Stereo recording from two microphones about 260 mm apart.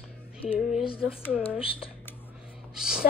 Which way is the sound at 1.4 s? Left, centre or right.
Left.